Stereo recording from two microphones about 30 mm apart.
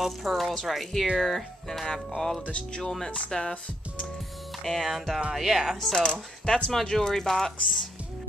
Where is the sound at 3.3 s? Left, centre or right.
Left.